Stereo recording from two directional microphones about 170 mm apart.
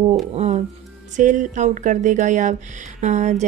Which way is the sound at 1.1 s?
50° right (ahead or behind).